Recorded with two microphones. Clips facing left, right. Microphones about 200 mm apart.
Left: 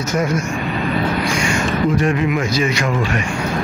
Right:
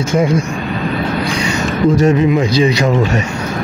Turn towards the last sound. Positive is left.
turn(degrees=-30)  # may be behind; listen again after turning